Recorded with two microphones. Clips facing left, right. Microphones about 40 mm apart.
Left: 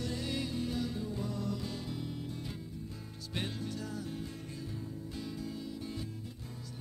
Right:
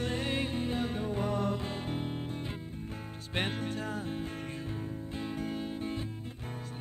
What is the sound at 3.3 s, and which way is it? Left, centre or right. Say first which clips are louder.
Music: right 5 dB; right.